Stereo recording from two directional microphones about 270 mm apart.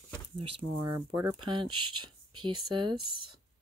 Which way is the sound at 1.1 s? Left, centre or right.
Centre.